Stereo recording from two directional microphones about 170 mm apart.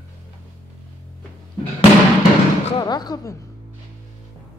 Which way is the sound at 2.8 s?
25° left (ahead or behind).